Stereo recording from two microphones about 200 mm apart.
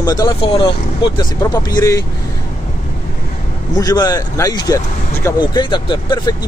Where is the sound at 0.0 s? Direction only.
20° left (ahead or behind).